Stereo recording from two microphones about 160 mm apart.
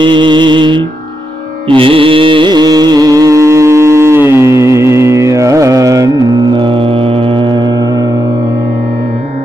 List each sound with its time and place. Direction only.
0.0 s music: 30° right (ahead or behind)
6.5 s music: 30° right (ahead or behind)